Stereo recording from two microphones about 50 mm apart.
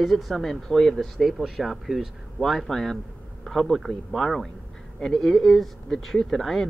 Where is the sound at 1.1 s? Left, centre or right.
Centre.